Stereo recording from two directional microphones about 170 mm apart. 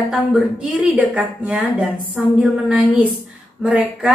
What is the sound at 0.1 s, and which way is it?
Speech, 5° right (ahead or behind).